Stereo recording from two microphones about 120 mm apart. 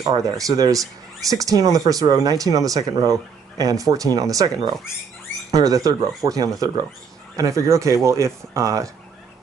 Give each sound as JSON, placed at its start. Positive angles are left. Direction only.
{"t": 0.0, "sound": "speech", "side_deg": -30}